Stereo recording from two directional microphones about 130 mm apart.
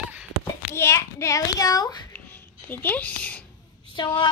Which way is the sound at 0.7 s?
20° left (ahead or behind).